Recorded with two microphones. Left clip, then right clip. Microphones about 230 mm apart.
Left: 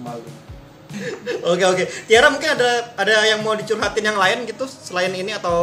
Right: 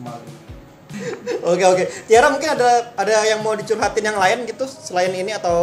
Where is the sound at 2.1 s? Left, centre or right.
Centre.